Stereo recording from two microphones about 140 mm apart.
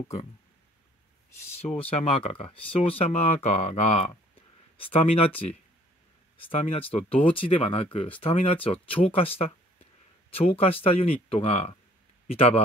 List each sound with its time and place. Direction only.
1.8 s speech: 45° left (ahead or behind)
10.3 s speech: 40° left (ahead or behind)